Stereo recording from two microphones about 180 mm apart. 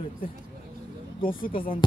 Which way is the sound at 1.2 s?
30° left (ahead or behind).